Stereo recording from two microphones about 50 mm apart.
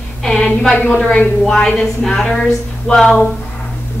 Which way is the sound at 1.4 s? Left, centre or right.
Centre.